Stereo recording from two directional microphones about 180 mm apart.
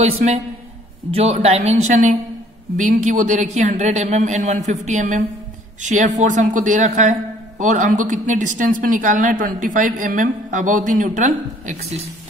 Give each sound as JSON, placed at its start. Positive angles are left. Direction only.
{"t": 0.0, "sound": "a man's voice", "side_deg": -35}